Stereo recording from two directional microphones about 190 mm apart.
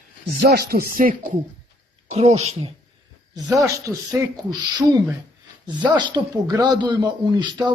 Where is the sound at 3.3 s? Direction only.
15° right (ahead or behind).